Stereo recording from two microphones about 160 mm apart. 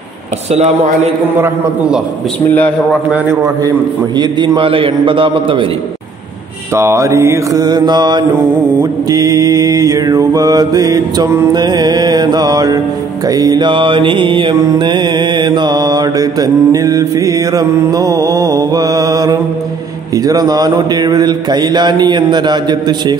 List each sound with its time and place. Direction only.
0.5 s speech: 45° right (ahead or behind)
1.3 s a man's voice: 15° right (ahead or behind)
2.4 s a man's voice: 10° left (ahead or behind)
4.2 s a man's voice: 30° right (ahead or behind)
6.7 s mantra: 15° right (ahead or behind)